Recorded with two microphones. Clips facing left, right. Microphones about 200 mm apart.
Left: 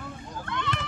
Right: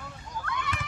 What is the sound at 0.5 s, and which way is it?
Children playing, 10° right (ahead or behind).